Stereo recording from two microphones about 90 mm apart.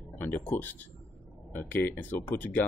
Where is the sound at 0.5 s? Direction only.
20° left (ahead or behind).